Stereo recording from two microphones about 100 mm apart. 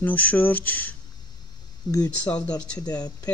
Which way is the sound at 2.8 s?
40° left (ahead or behind).